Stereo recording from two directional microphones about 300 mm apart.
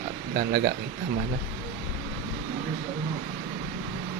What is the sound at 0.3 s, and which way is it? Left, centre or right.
Speech, right.